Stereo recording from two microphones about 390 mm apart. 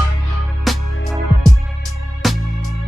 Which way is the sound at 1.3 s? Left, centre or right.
Right.